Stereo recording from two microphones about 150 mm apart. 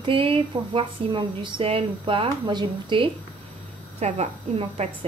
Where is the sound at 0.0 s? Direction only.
35° right (ahead or behind).